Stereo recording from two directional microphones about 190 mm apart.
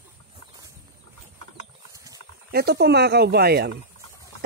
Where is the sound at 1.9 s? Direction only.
15° right (ahead or behind).